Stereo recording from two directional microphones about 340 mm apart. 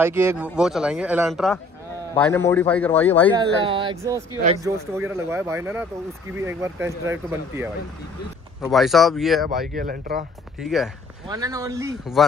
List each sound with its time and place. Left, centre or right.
0.0 s speech: centre
3.3 s speech: centre
9.8 s speech: right
10.6 s speech: centre